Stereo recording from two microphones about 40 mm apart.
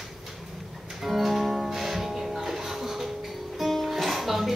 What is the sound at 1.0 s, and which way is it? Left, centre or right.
Music, centre.